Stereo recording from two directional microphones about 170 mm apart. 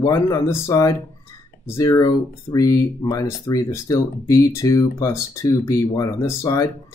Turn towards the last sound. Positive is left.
turn(degrees=20)  # may be behind; listen again after turning